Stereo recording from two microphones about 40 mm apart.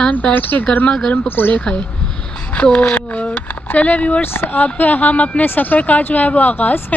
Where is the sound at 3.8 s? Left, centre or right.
Left.